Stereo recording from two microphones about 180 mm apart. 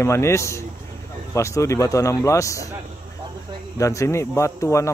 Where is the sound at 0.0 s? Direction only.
15° left (ahead or behind).